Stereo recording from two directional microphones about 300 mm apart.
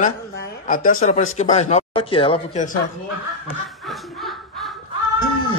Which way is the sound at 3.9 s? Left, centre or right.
Centre.